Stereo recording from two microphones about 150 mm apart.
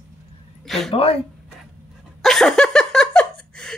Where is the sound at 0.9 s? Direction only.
40° left (ahead or behind).